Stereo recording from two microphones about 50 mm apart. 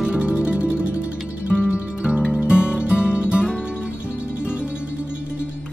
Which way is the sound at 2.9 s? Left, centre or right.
Left.